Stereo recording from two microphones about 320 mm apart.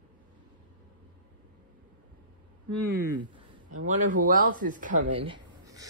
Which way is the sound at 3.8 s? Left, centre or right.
Right.